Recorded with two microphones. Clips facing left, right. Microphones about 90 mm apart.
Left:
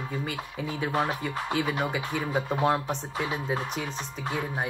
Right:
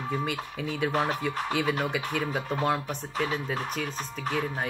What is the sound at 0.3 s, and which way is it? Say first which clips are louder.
Speech: right 1 dB; 10° left (ahead or behind).